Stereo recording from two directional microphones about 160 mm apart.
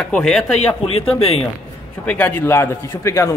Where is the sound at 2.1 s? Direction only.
10° left (ahead or behind).